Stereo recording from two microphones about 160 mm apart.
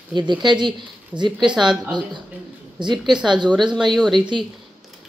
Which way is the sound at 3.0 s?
5° right (ahead or behind).